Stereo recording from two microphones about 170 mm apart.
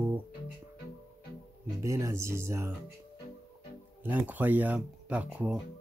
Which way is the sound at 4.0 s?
10° right (ahead or behind).